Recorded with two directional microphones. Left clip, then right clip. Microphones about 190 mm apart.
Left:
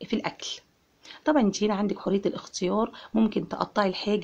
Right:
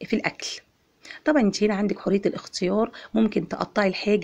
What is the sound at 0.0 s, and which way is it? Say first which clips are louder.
A woman's voice: right 4 dB; 20° right (ahead or behind).